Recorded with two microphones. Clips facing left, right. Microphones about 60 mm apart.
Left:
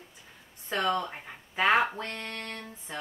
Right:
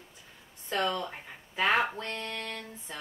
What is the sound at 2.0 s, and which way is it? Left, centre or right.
Speech, left.